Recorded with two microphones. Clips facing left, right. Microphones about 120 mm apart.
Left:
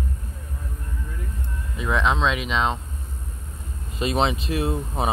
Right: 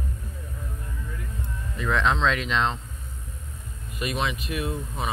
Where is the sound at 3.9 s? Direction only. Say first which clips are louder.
Left 6 dB; 30° left (ahead or behind).